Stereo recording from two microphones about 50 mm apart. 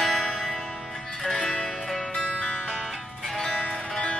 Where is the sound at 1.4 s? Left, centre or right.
Left.